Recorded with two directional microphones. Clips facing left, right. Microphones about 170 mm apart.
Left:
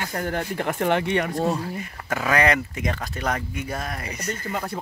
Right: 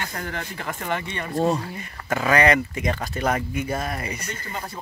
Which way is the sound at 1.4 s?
5° left (ahead or behind).